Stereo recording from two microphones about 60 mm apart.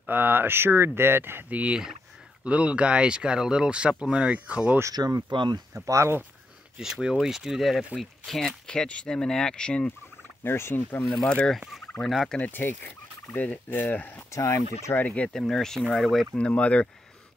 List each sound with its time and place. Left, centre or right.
0.0 s speech: right
1.5 s speech: right
4.9 s speech: right
5.9 s speech: right
6.8 s speech: centre
8.0 s speech: centre
10.4 s fowl: left
11.2 s speech: centre
12.0 s fowl: centre
12.4 s fowl: left
14.3 s speech: left
15.0 s speech: left
15.3 s speech: centre
16.3 s speech: left